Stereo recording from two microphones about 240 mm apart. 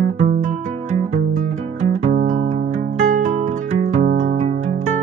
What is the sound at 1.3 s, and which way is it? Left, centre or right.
Music, right.